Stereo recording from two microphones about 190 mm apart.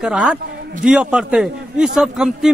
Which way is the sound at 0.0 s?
5° right (ahead or behind).